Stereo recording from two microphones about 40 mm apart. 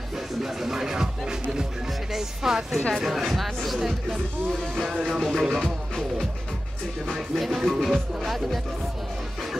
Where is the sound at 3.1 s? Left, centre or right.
Centre.